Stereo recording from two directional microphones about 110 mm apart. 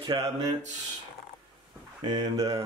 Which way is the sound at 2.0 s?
35° right (ahead or behind).